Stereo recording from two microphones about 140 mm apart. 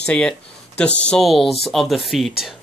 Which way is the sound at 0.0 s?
5° left (ahead or behind).